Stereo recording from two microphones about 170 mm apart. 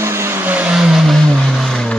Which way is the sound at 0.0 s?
15° right (ahead or behind).